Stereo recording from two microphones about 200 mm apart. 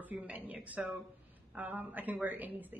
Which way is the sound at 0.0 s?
10° right (ahead or behind).